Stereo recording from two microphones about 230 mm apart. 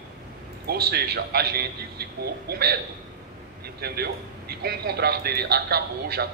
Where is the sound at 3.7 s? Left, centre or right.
Right.